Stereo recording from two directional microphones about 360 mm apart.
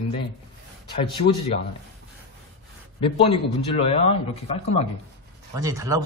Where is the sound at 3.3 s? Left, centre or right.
Centre.